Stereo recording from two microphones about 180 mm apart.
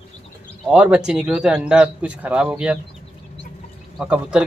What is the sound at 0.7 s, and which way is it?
Speech, 5° right (ahead or behind).